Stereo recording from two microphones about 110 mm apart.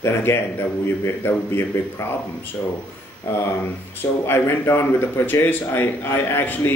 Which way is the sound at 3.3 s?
25° left (ahead or behind).